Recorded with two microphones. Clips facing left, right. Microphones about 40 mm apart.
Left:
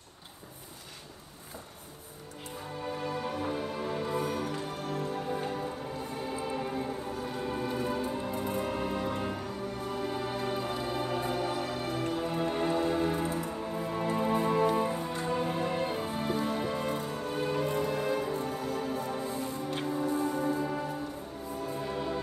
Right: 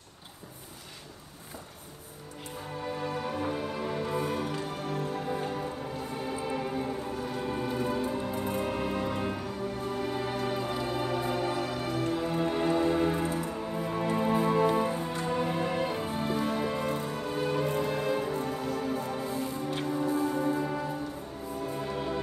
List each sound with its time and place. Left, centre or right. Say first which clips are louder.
2.8 s music: right 1 dB; centre
17.6 s music: right 1 dB; right
18.0 s music: right 1 dB; centre
19.3 s music: right 2 dB; right
19.6 s music: even; centre
20.1 s music: right 2 dB; right
20.6 s music: right 1 dB; centre